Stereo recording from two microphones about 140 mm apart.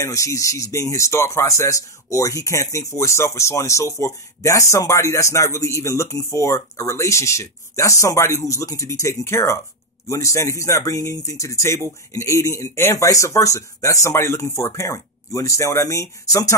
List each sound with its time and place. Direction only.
0.0 s speech: 20° left (ahead or behind)